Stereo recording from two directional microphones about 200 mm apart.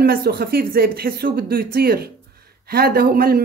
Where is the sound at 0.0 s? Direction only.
50° right (ahead or behind).